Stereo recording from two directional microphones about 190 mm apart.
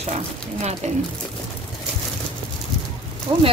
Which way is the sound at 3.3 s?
20° right (ahead or behind).